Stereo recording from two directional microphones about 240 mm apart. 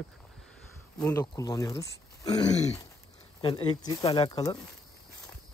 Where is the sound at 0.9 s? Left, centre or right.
Centre.